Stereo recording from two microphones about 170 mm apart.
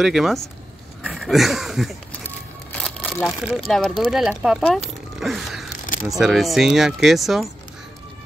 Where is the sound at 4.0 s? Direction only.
5° right (ahead or behind).